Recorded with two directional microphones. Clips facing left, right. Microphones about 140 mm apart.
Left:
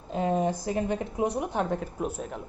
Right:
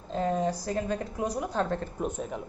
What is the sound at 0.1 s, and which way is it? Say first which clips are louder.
A woman's voice: left 1 dB; 20° left (ahead or behind).